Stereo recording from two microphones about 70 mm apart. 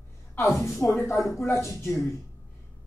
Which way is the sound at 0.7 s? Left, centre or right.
Left.